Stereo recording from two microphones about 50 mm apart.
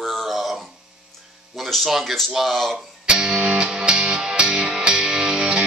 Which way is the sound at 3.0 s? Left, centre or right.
Centre.